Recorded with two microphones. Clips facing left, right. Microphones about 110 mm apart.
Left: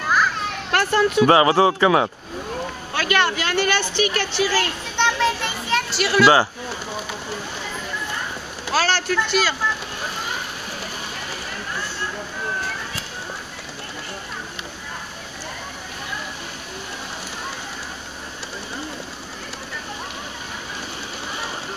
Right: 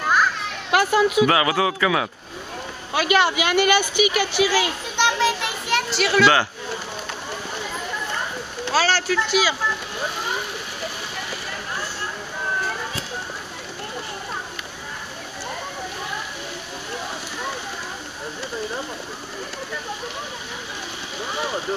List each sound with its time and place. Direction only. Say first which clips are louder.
0.7 s speech: right 1 dB; 10° right (ahead or behind)
1.2 s speech: left 4 dB; 35° left (ahead or behind)
2.9 s speech: right 2 dB; 10° right (ahead or behind)
8.7 s speech: even; centre (ahead or behind)